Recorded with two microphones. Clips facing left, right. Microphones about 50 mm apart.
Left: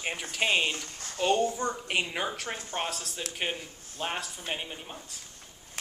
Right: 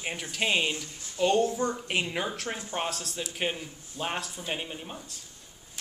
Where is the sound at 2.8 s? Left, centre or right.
Centre.